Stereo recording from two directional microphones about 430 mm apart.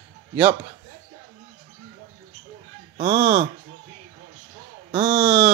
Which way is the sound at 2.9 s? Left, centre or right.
Centre.